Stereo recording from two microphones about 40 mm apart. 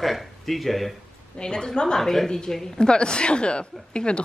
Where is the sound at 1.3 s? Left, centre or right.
Centre.